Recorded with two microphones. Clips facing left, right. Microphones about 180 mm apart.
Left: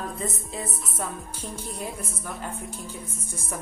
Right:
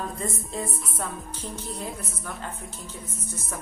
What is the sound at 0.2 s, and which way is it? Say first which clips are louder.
Music: right 1 dB; centre (ahead or behind).